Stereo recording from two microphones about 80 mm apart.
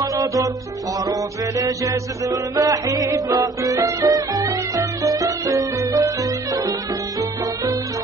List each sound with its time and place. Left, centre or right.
0.0 s music: right
1.6 s music: right